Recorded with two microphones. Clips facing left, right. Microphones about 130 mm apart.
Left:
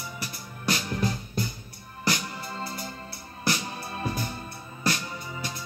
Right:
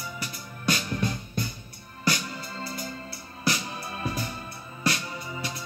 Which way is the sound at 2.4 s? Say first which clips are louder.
Left 1 dB; 35° left (ahead or behind).